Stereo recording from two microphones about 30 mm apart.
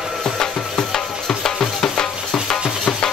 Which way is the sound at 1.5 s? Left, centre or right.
Left.